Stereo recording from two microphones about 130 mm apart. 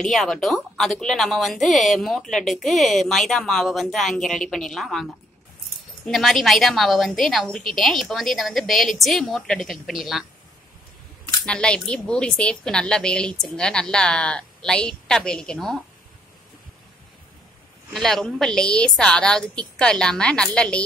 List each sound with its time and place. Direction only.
0.0 s speech: 5° left (ahead or behind)
11.4 s a woman's voice: 5° left (ahead or behind)
17.9 s a woman's voice: 5° left (ahead or behind)